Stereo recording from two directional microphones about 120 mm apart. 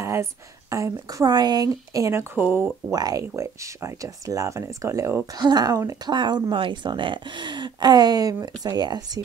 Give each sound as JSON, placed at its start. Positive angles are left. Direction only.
{"t": 0.0, "sound": "speech", "side_deg": -20}
{"t": 2.9, "sound": "speech", "side_deg": -30}